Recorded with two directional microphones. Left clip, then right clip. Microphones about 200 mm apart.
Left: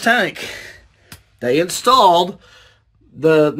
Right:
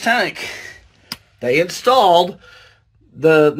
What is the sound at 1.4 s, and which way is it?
Speech, 35° left (ahead or behind).